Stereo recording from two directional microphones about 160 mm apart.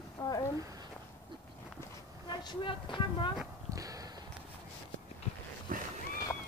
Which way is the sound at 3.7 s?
20° right (ahead or behind).